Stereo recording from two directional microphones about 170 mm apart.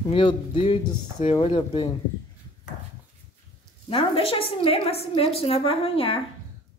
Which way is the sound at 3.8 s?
30° left (ahead or behind).